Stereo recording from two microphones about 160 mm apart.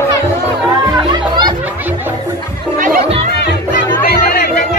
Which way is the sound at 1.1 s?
30° right (ahead or behind).